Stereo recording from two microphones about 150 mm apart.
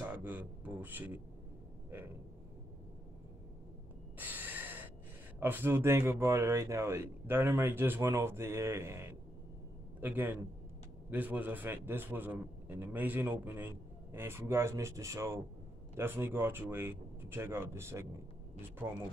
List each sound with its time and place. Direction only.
0.0 s speech: 10° right (ahead or behind)
4.2 s gasp: 10° right (ahead or behind)
5.4 s a man's voice: 15° right (ahead or behind)